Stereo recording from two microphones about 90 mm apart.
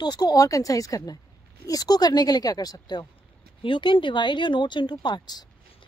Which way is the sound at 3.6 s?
65° left (ahead or behind).